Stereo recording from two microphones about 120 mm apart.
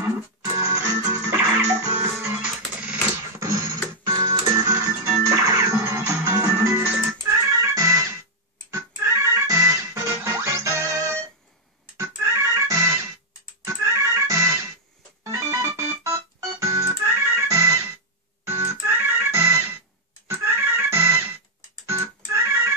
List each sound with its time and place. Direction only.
0.0 s music: 25° right (ahead or behind)
3.3 s music: 25° right (ahead or behind)
15.2 s organ: 25° right (ahead or behind)
18.4 s music: 20° right (ahead or behind)
21.8 s organ: 25° right (ahead or behind)